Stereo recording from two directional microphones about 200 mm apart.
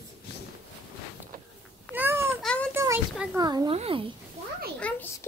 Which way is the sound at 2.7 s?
10° right (ahead or behind).